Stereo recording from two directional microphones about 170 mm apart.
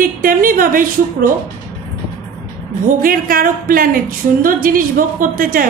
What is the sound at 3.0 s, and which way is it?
Speech, 55° right (ahead or behind).